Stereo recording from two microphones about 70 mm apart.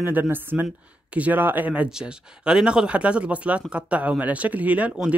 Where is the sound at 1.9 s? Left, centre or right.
Centre.